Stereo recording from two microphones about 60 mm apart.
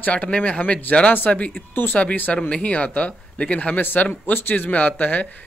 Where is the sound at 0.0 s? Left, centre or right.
Left.